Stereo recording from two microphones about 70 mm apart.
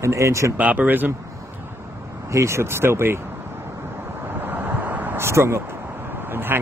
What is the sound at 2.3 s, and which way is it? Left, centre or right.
Speech, right.